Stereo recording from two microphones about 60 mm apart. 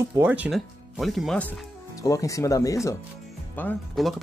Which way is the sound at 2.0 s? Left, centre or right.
Left.